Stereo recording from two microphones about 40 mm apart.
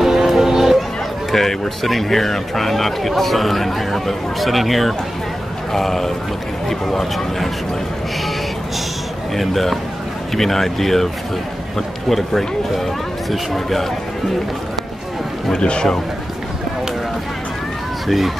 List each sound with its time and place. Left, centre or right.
0.0 s music: centre
1.3 s speech: centre
9.3 s speech: centre
12.1 s speech: centre
15.5 s speech: left
18.0 s speech: centre